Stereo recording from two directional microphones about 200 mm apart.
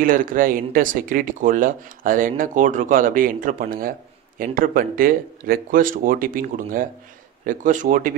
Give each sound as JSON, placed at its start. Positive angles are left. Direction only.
{"t": 0.0, "sound": "speech", "side_deg": -45}